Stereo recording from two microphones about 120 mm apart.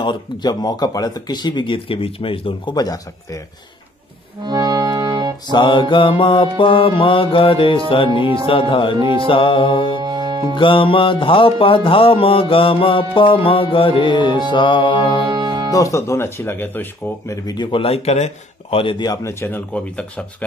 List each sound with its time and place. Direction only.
0.0 s speech: 40° left (ahead or behind)
2.7 s speech: 35° left (ahead or behind)
4.5 s accordion: 35° right (ahead or behind)
5.5 s music: 40° left (ahead or behind)
10.0 s music: 40° right (ahead or behind)
10.5 s music: 45° left (ahead or behind)
14.5 s speech: 40° left (ahead or behind)
15.2 s music: 40° right (ahead or behind)
15.7 s speech: 25° left (ahead or behind)
17.3 s music: 35° left (ahead or behind)
19.2 s speech: 15° left (ahead or behind)